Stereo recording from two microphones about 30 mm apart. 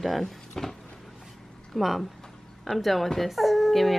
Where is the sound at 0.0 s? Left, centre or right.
Centre.